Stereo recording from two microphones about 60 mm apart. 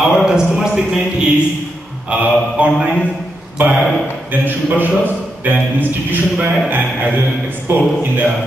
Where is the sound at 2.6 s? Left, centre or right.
Right.